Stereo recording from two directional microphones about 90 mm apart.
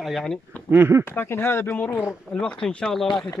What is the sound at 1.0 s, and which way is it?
Speech, 25° left (ahead or behind).